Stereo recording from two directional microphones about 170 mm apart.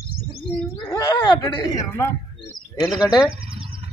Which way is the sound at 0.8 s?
25° left (ahead or behind).